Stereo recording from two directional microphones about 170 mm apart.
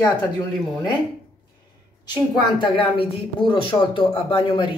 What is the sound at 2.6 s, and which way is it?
Speech, 30° left (ahead or behind).